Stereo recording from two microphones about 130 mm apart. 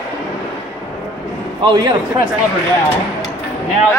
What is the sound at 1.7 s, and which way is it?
Speech, 30° right (ahead or behind).